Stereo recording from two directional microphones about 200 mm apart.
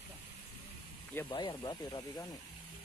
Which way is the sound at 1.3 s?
20° left (ahead or behind).